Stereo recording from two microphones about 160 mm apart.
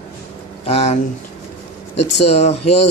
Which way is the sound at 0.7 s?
40° left (ahead or behind).